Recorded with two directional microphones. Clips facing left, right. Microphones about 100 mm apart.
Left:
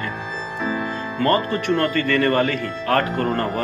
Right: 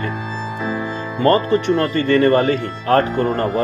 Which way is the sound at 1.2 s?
25° right (ahead or behind).